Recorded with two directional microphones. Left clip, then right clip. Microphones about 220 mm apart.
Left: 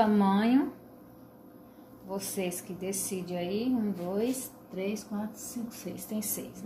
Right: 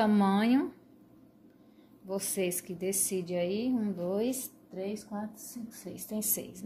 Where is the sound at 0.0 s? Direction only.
50° right (ahead or behind).